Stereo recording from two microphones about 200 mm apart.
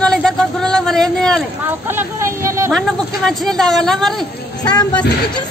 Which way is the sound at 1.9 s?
15° right (ahead or behind).